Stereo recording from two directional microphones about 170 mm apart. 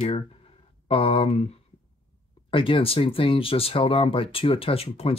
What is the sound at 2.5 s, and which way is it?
Speech, 30° left (ahead or behind).